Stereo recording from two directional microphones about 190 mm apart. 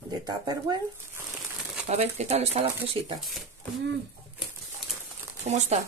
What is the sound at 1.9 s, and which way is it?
Speech, 35° right (ahead or behind).